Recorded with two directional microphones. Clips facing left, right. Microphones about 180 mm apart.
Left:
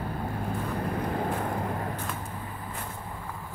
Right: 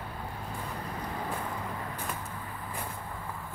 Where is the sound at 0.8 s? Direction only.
55° left (ahead or behind).